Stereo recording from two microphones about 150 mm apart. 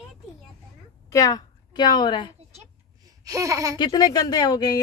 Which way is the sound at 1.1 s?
25° left (ahead or behind).